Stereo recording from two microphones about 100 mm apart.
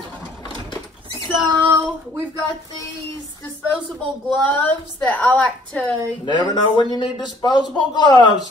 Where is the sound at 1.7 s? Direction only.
25° right (ahead or behind).